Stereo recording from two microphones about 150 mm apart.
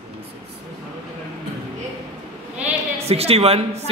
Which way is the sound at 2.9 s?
40° right (ahead or behind).